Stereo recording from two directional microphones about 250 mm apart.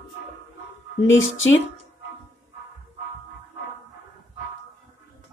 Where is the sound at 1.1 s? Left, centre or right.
Left.